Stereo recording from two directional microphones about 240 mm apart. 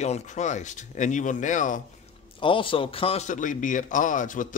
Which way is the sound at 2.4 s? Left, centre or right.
Left.